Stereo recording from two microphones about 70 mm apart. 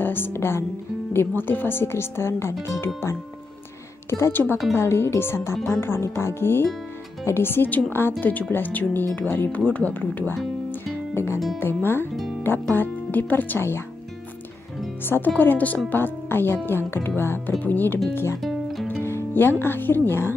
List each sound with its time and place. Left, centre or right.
0.0 s speech: left
4.1 s speech: left
11.6 s speech: left
15.0 s speech: left
18.1 s speech: left
18.4 s music: centre
18.9 s music: left
19.6 s speech: left